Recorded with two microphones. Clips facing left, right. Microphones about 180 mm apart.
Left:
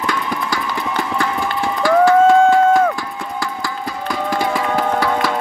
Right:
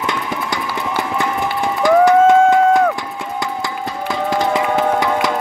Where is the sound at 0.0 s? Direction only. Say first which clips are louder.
Even; 20° right (ahead or behind).